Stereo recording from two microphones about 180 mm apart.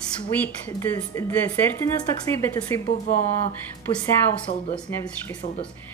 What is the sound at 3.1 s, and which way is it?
Speech, 40° left (ahead or behind).